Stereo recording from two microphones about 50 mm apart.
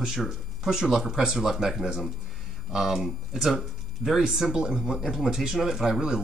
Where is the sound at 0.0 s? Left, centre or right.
Centre.